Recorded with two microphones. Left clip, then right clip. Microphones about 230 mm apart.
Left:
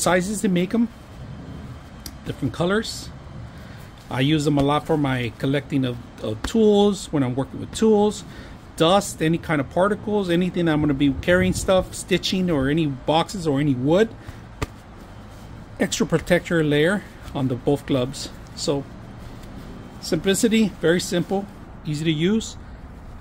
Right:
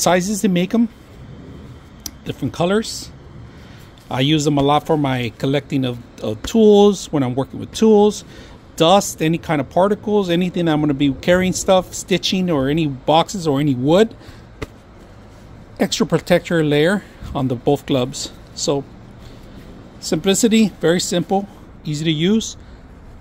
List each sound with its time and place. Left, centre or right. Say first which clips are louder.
0.0 s speech: right 4 dB; right
2.0 s speech: right 3 dB; right
4.1 s speech: right 4 dB; right
15.8 s speech: right 4 dB; right
20.0 s speech: right 4 dB; right